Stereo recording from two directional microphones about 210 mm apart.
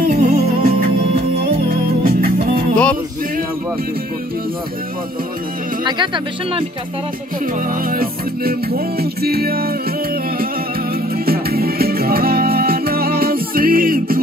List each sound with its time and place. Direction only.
0.0 s music: 35° right (ahead or behind)
2.0 s music: 45° right (ahead or behind)
2.7 s music: 5° left (ahead or behind)
5.9 s speech: 20° right (ahead or behind)
7.6 s music: 45° right (ahead or behind)
11.2 s music: 45° right (ahead or behind)